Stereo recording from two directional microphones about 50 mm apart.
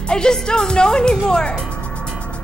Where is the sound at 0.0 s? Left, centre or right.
Centre.